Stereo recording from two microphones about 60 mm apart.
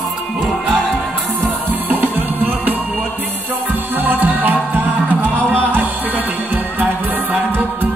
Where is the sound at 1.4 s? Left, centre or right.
Right.